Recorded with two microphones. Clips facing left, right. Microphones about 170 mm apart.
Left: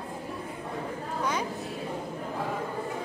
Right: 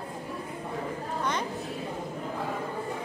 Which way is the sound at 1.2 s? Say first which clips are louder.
Left 1 dB; 10° left (ahead or behind).